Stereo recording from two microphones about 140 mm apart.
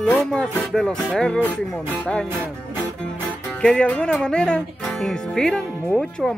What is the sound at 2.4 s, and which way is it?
Music, 15° right (ahead or behind).